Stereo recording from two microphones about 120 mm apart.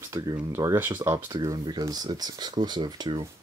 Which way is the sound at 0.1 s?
30° right (ahead or behind).